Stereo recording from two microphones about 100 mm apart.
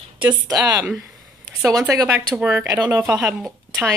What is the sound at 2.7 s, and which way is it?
Speech, 35° right (ahead or behind).